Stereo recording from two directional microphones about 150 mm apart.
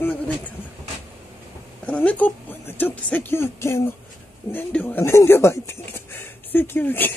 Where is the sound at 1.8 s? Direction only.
10° left (ahead or behind).